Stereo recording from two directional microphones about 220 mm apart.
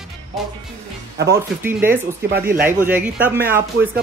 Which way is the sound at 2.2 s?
45° right (ahead or behind).